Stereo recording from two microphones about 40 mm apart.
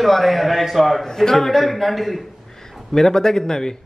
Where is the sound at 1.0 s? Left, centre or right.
Centre.